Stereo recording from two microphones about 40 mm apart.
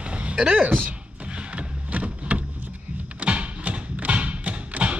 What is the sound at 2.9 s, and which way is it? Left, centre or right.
Music, right.